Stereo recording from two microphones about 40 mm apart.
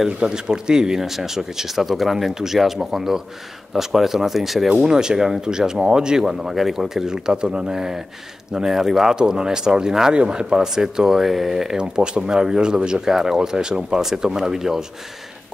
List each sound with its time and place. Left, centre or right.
0.2 s speech: centre
4.8 s speech: centre
11.7 s speech: right